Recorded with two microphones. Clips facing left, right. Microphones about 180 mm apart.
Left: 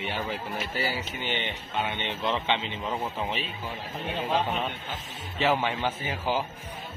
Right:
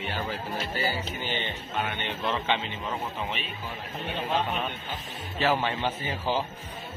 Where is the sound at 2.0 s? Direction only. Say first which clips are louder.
Left 1 dB; 20° left (ahead or behind).